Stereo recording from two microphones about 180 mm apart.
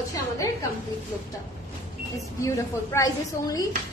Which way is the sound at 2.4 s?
15° left (ahead or behind).